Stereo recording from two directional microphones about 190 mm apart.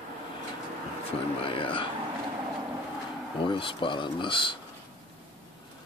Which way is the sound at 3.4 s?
25° left (ahead or behind).